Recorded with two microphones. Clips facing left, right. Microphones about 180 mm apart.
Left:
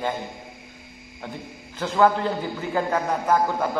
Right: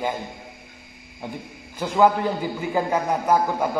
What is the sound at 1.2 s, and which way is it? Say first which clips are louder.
A man's voice: right 2 dB; 10° right (ahead or behind).